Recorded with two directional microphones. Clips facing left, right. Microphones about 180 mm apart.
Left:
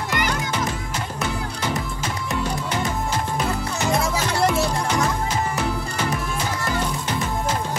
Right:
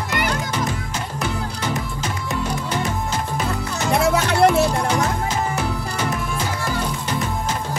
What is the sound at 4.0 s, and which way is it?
Music, 65° right (ahead or behind).